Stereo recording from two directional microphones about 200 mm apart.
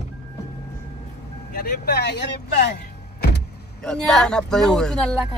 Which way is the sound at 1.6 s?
55° left (ahead or behind).